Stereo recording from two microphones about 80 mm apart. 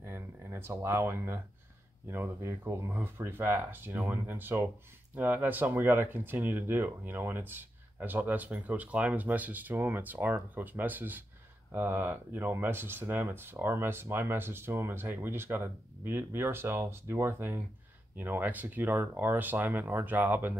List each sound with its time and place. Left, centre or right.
0.0 s speech: right